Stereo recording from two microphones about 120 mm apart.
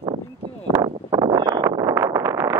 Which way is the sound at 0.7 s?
30° right (ahead or behind).